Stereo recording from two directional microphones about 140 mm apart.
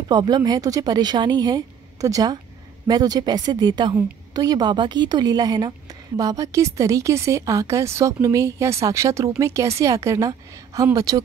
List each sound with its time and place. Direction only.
0.1 s a woman's voice: 30° right (ahead or behind)